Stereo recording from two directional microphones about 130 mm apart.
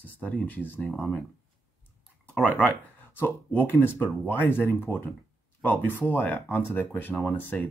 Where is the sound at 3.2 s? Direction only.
15° left (ahead or behind).